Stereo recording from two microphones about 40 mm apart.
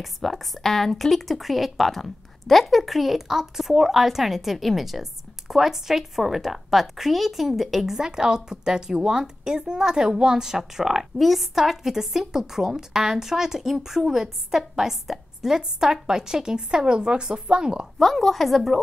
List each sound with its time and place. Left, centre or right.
0.0 s speech: centre; by 17.8 s right
17.9 s speech: centre